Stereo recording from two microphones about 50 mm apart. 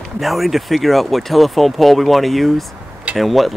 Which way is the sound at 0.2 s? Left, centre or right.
Centre.